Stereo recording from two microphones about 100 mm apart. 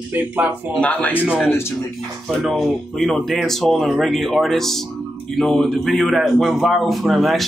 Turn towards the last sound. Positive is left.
turn(degrees=0)  # may be behind; listen again after turning